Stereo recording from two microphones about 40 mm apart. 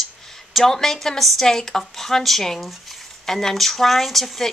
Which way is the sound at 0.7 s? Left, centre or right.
Centre.